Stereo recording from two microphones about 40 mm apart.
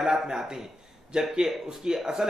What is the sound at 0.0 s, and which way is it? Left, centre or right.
Speech, centre.